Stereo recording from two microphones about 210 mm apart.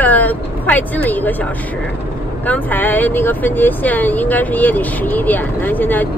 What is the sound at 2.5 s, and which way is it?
Speech, 10° left (ahead or behind).